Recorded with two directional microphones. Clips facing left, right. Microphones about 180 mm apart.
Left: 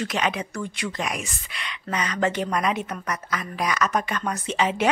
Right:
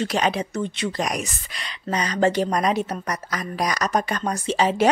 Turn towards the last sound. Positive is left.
turn(degrees=-35)  # may be behind; listen again after turning